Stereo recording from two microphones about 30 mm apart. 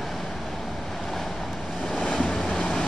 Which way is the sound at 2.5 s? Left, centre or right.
Centre.